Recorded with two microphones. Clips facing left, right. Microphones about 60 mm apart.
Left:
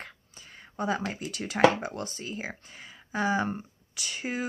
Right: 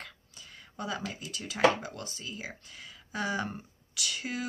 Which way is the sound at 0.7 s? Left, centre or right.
Left.